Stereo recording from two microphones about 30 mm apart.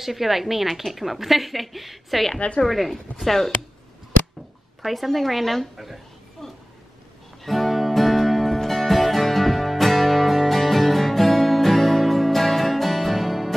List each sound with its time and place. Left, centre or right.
0.0 s a woman's voice: centre
4.8 s a woman's voice: centre
6.4 s a sound: centre
7.4 s music: centre